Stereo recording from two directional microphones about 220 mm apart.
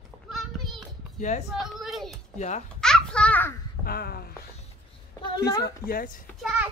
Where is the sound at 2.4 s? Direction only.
35° left (ahead or behind).